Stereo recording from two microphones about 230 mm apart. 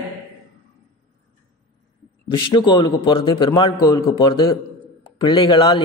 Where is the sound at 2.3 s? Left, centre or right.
Left.